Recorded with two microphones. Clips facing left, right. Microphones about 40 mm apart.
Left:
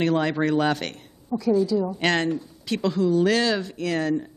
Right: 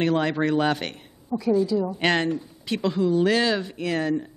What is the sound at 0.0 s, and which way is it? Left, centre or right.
A woman's voice, centre.